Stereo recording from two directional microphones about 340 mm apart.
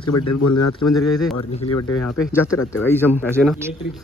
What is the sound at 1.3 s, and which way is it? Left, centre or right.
Speech, left.